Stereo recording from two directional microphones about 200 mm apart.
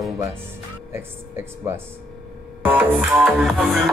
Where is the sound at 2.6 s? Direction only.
10° right (ahead or behind).